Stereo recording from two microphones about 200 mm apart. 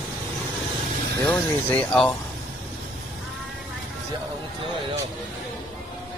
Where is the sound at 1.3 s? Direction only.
5° left (ahead or behind).